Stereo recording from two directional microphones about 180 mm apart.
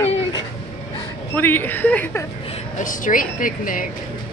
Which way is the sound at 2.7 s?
45° left (ahead or behind).